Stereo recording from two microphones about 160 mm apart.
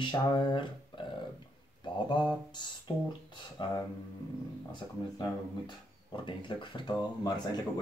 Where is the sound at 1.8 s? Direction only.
30° left (ahead or behind).